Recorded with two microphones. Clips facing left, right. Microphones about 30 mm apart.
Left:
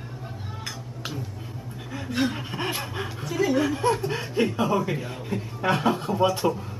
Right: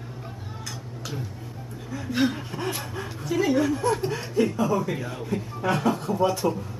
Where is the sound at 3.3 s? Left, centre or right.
Centre.